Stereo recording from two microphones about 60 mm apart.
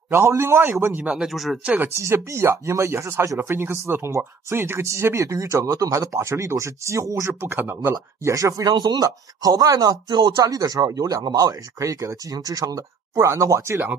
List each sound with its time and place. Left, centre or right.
0.1 s speech: right
1.0 s speech: centre
2.0 s speech: right
5.1 s speech: right
7.2 s speech: right
8.2 s speech: right
11.1 s speech: right